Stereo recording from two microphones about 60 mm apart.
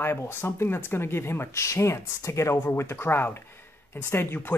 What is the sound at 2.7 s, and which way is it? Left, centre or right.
Speech, left.